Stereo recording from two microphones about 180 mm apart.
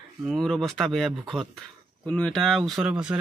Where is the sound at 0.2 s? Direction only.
Centre (ahead or behind).